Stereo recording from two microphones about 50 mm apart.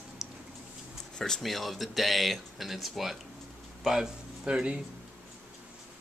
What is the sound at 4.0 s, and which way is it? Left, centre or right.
Speech, centre.